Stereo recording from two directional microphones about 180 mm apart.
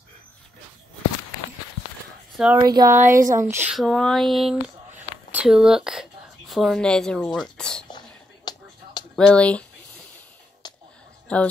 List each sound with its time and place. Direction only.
2.3 s speech: 5° right (ahead or behind)
2.6 s speech: 20° right (ahead or behind)
3.0 s speech: 50° right (ahead or behind)
3.3 s speech: 15° right (ahead or behind); by 7.3 s 5° left (ahead or behind)
7.5 s a sound: 5° left (ahead or behind)
8.5 s a sound: 25° left (ahead or behind)
9.1 s speech: 5° left (ahead or behind)
11.3 s speech: 5° left (ahead or behind)